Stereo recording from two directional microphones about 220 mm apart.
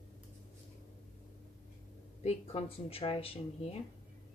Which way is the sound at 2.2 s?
30° left (ahead or behind).